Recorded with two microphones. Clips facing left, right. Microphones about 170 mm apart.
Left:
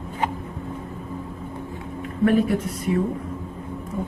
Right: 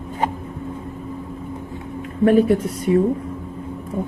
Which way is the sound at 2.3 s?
30° right (ahead or behind).